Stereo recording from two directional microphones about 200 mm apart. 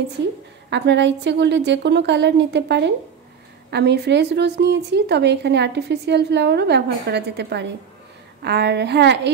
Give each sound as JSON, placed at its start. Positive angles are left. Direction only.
{"t": 0.7, "sound": "a woman's voice", "side_deg": -60}